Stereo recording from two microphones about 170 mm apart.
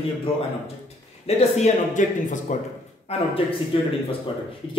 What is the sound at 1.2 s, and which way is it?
Speech, 40° left (ahead or behind).